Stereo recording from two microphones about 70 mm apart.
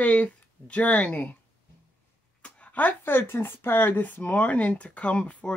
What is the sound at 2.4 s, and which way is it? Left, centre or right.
Speech, centre.